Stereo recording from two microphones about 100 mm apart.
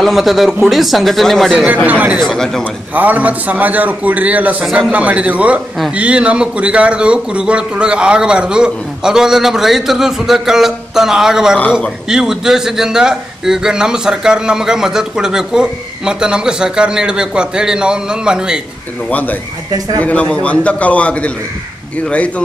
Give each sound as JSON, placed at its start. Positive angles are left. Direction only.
{"t": 0.0, "sound": "speech", "side_deg": 0}
{"t": 1.9, "sound": "a man's voice", "side_deg": -15}
{"t": 2.1, "sound": "speech", "side_deg": 5}
{"t": 2.9, "sound": "a man's voice", "side_deg": -15}
{"t": 19.0, "sound": "a man's voice", "side_deg": 15}